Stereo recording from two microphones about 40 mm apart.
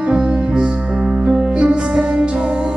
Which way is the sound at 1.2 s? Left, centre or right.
Right.